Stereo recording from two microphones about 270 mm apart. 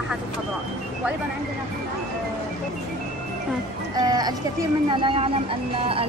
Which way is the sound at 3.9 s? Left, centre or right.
Centre.